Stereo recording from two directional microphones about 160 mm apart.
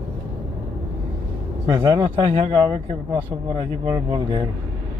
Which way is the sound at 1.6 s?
25° right (ahead or behind).